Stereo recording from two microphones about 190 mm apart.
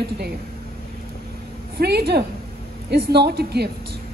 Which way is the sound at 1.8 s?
60° right (ahead or behind).